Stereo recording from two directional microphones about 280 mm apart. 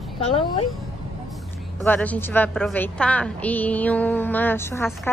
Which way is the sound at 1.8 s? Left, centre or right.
Centre.